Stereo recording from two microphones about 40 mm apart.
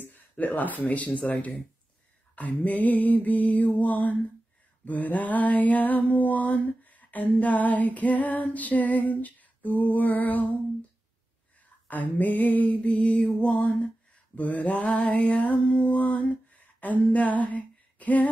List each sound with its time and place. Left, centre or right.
0.0 s speech: left
2.3 s mantra: left
11.9 s mantra: left
13.4 s a sound: left
14.3 s mantra: left
15.8 s a sound: left